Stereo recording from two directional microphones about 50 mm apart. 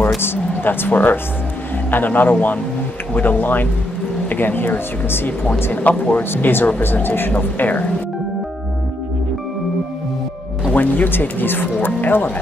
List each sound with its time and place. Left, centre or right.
0.2 s speech: left
5.8 s speech: left
6.3 s speech: left
10.7 s speech: left